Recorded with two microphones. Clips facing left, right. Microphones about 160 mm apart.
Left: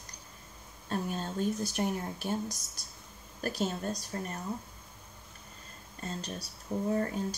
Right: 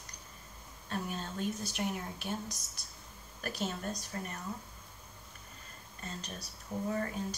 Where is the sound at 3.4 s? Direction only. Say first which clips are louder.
Left 4 dB; 35° left (ahead or behind).